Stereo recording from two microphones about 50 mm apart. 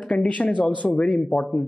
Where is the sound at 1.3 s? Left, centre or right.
Centre.